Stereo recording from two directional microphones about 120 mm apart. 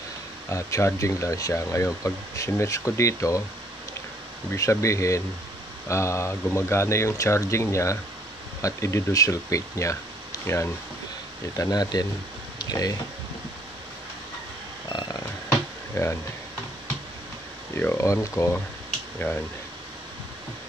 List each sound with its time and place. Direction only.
0.5 s speech: 25° left (ahead or behind)
4.5 s speech: 25° left (ahead or behind)
14.9 s a sound: 35° left (ahead or behind)
15.9 s speech: 20° left (ahead or behind)
17.7 s speech: 20° left (ahead or behind)